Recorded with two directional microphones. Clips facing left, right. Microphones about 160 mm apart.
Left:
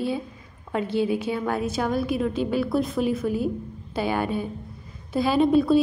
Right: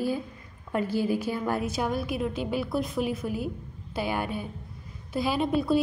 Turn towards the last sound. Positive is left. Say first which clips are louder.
# left 6 dB
turn(degrees=-10)  # may be behind; listen again after turning